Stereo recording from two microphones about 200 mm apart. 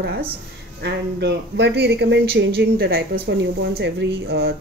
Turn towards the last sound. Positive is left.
turn(degrees=-55)  # may be behind; listen again after turning